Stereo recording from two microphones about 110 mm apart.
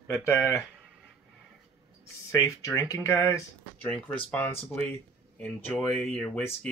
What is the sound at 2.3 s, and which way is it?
Speech, 30° left (ahead or behind).